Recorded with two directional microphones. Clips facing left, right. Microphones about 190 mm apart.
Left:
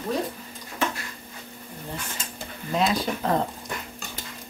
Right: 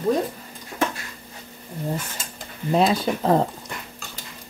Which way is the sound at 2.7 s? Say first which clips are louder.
Right 5 dB; 30° right (ahead or behind).